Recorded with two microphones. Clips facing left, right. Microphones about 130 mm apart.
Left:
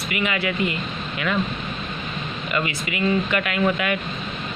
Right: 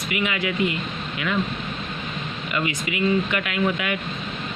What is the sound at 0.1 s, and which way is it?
Speech, 15° right (ahead or behind).